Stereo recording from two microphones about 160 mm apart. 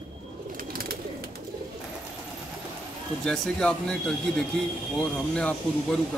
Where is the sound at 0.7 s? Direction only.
65° right (ahead or behind).